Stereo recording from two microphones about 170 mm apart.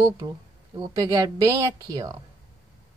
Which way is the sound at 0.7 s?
20° right (ahead or behind).